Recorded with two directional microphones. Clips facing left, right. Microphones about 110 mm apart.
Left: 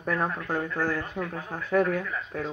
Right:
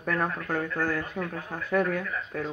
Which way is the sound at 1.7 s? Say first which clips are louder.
Left 2 dB; 30° left (ahead or behind).